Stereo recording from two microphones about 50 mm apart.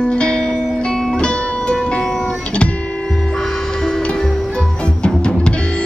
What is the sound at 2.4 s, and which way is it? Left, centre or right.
Guitar, left.